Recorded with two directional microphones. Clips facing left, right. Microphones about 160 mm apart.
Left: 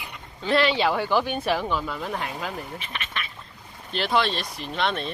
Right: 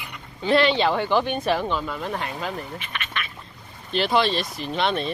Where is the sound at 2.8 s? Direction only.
30° left (ahead or behind).